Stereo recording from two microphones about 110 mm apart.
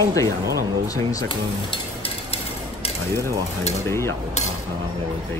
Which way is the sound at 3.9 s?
25° left (ahead or behind).